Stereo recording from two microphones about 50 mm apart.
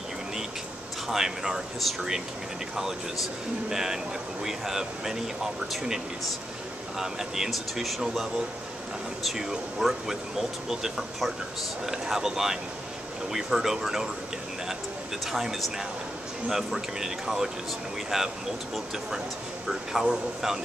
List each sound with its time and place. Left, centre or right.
1.0 s speech: centre
3.7 s speech: centre
15.3 s speech: centre
19.7 s speech: centre